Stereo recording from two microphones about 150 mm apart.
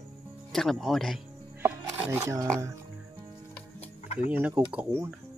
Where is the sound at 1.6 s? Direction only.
15° right (ahead or behind).